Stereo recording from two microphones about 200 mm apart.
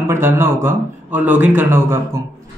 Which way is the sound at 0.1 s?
10° right (ahead or behind).